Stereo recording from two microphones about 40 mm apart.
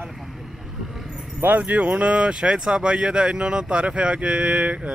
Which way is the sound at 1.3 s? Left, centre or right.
Right.